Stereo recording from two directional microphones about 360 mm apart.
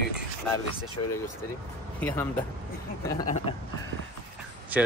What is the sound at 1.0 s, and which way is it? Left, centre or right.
Speech, left.